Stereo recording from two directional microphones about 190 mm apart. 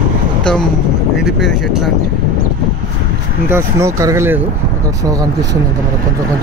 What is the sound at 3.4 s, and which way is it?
Speech, 15° right (ahead or behind).